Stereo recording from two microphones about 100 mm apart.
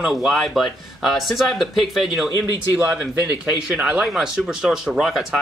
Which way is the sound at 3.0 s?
10° right (ahead or behind).